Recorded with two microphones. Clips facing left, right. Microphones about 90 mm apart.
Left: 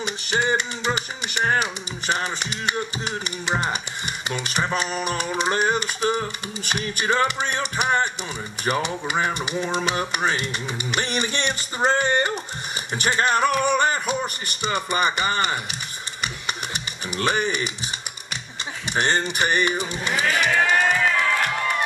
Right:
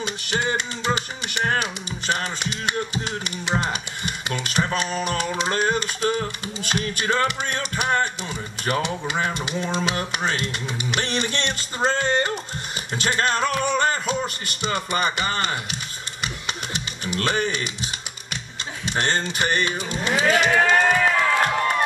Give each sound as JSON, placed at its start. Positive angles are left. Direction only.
{"t": 0.0, "sound": "speech", "side_deg": 20}
{"t": 3.1, "sound": "a sound", "side_deg": 15}
{"t": 16.7, "sound": "speech", "side_deg": 15}
{"t": 18.9, "sound": "a sound", "side_deg": 15}
{"t": 20.2, "sound": "speech", "side_deg": -20}
{"t": 20.5, "sound": "music", "side_deg": -20}